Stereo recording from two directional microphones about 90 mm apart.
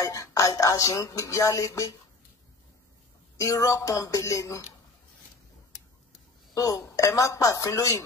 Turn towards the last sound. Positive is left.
turn(degrees=35)  # may be behind; listen again after turning